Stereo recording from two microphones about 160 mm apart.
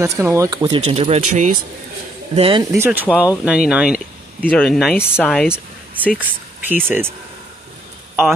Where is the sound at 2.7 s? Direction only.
15° right (ahead or behind); by 6.2 s 10° left (ahead or behind).